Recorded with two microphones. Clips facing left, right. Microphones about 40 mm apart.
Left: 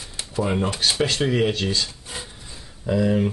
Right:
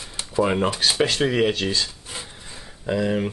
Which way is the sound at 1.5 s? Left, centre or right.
Right.